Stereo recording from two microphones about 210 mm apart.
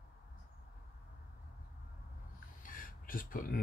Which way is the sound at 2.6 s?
40° left (ahead or behind).